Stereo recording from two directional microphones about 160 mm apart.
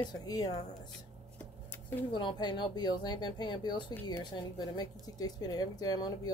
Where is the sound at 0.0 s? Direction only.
25° left (ahead or behind).